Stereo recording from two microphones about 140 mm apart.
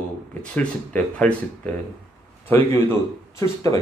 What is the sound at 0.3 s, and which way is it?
Speech, 10° left (ahead or behind).